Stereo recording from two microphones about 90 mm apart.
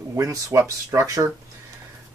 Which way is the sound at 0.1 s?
40° right (ahead or behind).